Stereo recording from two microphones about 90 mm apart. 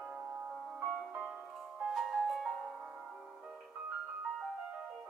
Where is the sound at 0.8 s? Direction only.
5° right (ahead or behind).